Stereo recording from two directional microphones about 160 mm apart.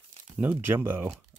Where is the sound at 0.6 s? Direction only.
15° right (ahead or behind).